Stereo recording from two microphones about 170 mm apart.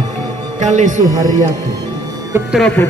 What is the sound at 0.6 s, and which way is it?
Speech, 45° right (ahead or behind).